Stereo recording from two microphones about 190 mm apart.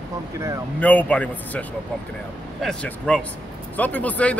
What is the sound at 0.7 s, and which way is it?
Speech, 10° left (ahead or behind).